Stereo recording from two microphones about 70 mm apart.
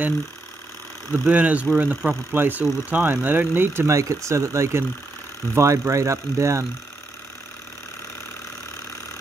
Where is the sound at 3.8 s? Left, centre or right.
Right.